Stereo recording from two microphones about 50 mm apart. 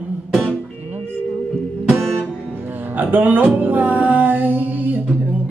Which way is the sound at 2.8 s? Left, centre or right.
Right.